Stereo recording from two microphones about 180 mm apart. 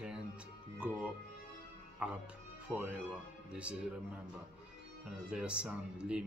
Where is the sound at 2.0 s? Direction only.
5° right (ahead or behind).